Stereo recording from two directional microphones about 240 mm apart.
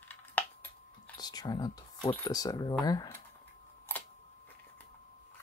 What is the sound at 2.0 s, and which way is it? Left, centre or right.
Speech, centre.